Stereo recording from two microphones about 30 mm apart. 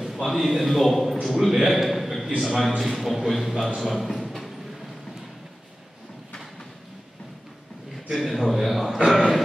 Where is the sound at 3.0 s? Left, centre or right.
Centre.